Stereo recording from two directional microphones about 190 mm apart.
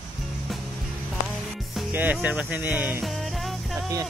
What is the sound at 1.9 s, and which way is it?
Speech, 10° right (ahead or behind).